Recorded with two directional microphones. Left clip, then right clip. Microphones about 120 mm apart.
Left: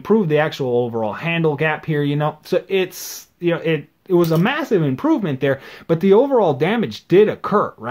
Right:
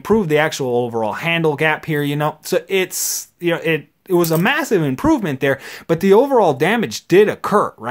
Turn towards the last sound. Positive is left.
turn(degrees=-30)  # may be behind; listen again after turning